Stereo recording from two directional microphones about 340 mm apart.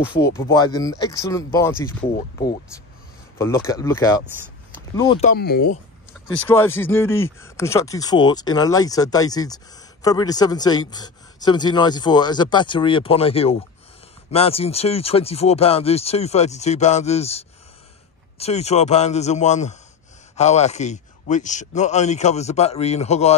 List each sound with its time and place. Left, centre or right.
0.3 s speech: centre
5.3 s speech: left
6.3 s speech: centre